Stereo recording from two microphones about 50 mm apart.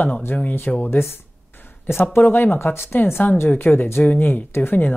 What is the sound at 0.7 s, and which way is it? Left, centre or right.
Speech, left.